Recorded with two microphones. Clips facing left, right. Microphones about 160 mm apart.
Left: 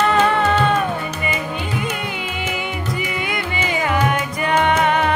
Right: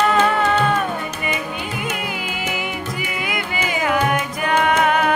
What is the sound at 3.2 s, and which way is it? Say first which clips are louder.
Music: left 1 dB; 5° right (ahead or behind).